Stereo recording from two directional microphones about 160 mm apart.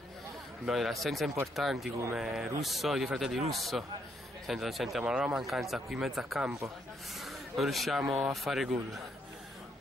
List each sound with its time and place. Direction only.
0.7 s a man's voice: centre (ahead or behind)
7.2 s a sound: centre (ahead or behind)
8.1 s a man's voice: centre (ahead or behind)